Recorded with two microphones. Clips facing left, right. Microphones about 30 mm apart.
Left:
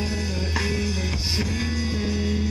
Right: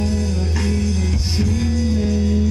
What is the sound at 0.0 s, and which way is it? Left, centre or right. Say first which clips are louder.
Music: right 5 dB; centre.